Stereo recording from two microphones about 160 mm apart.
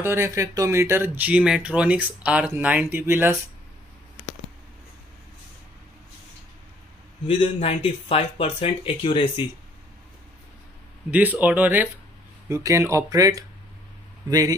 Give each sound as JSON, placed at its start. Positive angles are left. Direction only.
{"t": 0.0, "sound": "speech", "side_deg": -15}
{"t": 7.2, "sound": "speech", "side_deg": 35}
{"t": 11.1, "sound": "speech", "side_deg": -10}